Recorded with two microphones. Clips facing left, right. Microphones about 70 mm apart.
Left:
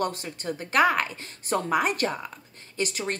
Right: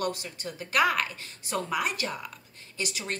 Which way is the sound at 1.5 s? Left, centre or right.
Left.